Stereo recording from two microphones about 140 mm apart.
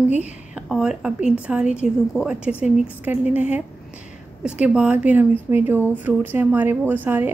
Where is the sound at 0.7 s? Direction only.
5° right (ahead or behind).